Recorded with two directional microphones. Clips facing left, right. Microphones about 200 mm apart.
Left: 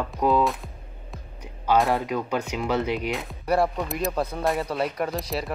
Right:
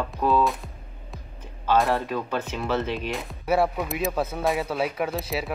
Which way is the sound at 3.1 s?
5° right (ahead or behind).